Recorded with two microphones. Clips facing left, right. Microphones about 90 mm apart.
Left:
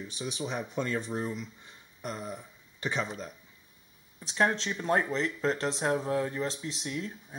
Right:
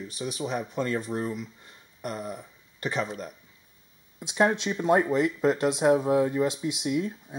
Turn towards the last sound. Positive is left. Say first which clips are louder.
# right 8 dB
turn(degrees=-15)  # may be behind; listen again after turning